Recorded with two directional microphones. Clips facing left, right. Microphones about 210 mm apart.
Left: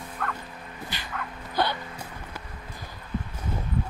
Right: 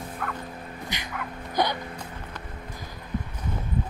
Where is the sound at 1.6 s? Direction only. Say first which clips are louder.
Right 1 dB; 15° right (ahead or behind).